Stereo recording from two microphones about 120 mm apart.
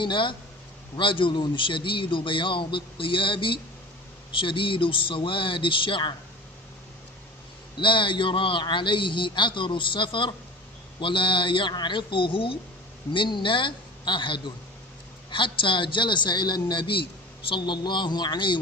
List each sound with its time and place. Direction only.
0.0 s a man's voice: 45° left (ahead or behind)
7.8 s a man's voice: 45° left (ahead or behind)